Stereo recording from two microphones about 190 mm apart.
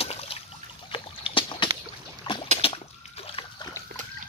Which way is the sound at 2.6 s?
30° left (ahead or behind).